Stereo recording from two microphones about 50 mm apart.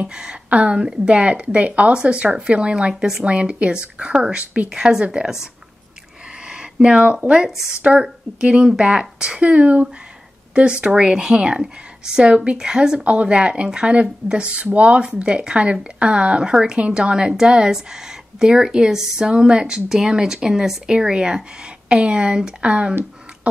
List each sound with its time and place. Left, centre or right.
0.1 s a woman's voice: centre
3.3 s a woman's voice: right
4.6 s speech: centre
6.4 s a sound: centre
7.2 s a woman's voice: centre